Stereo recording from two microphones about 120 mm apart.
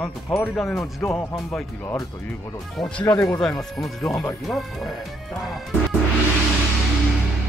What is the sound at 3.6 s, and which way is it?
Speech, 5° left (ahead or behind).